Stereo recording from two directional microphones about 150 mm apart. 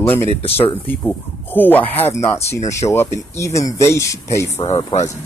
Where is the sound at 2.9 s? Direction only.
20° left (ahead or behind).